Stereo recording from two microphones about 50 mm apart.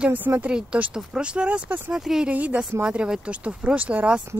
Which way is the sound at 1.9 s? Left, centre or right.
Centre.